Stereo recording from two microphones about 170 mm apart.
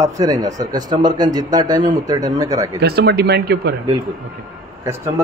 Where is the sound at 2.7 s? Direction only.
70° right (ahead or behind).